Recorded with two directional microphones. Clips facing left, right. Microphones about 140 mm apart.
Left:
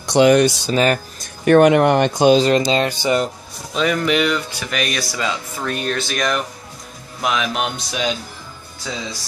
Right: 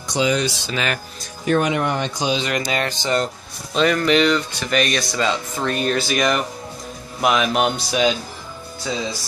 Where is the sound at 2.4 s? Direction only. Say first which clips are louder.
Left 7 dB; 30° left (ahead or behind).